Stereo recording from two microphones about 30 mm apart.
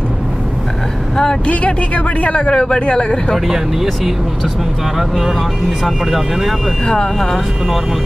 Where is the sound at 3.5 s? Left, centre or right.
Centre.